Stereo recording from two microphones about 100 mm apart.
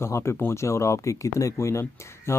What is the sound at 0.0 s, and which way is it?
Speech, 30° left (ahead or behind).